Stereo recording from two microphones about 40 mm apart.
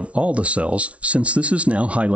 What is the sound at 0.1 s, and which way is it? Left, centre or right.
Speech, right.